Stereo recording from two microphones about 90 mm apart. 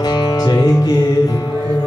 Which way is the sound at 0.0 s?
50° left (ahead or behind).